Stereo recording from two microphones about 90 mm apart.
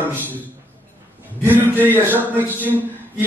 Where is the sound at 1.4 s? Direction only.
20° right (ahead or behind).